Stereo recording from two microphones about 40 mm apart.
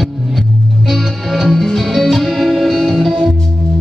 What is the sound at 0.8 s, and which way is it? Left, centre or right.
Music, centre.